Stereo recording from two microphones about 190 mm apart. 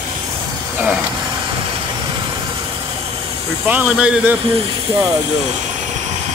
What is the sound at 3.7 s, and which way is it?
Speech, 5° right (ahead or behind).